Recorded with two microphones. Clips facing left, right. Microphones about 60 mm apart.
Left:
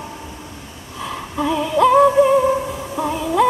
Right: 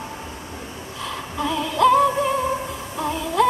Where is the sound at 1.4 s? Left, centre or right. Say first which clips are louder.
Left 3 dB; centre.